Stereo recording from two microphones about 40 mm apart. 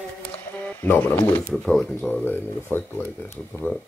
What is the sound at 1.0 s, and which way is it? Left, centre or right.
Speech, left.